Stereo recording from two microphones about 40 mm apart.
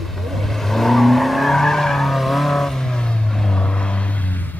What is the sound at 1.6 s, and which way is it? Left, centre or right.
Skidding, centre.